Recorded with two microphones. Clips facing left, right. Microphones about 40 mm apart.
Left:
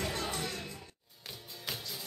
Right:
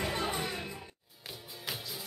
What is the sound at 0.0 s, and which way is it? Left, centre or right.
Music, centre.